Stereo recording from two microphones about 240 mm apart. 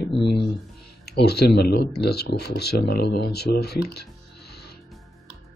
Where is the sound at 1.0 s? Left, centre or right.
Left.